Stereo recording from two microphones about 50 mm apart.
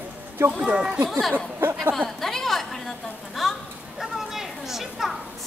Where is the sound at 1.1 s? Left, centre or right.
Centre.